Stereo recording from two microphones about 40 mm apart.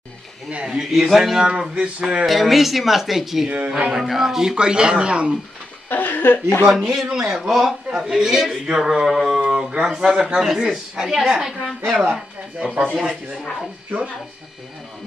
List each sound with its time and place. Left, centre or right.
0.7 s a man's voice: centre
1.6 s speech: right
2.2 s speech: centre
3.4 s speech: right
3.9 s speech: centre; by 5.4 s right
5.9 s speech: left
6.7 s a man's voice: centre
11.6 s speech: centre
12.5 s speech: right